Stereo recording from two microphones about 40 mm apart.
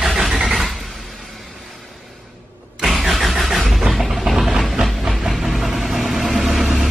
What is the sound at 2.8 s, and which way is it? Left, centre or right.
Vehicle, centre.